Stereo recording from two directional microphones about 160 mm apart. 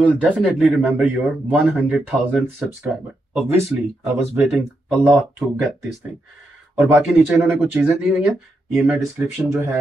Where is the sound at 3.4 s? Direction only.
15° right (ahead or behind).